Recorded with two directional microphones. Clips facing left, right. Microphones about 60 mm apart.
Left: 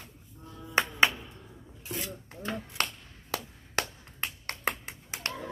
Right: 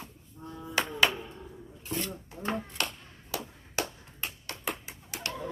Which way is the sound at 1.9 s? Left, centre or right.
Centre.